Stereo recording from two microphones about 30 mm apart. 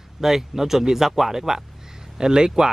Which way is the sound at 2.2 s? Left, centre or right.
Right.